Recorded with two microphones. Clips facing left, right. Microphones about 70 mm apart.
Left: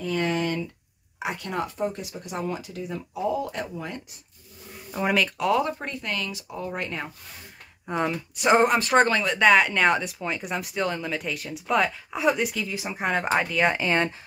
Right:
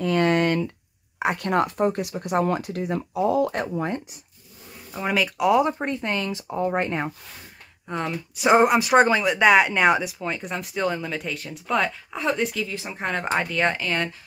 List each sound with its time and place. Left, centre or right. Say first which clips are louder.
0.0 s a sound: right 5 dB; right
1.2 s speech: right 7 dB; right
4.9 s speech: even; centre; by 7.1 s right
7.8 s speech: left 2 dB; centre
8.5 s speech: right 2 dB; centre
13.7 s speech: left 2 dB; left